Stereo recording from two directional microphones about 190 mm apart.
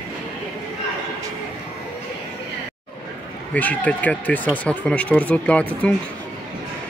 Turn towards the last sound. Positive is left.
turn(degrees=5)  # may be behind; listen again after turning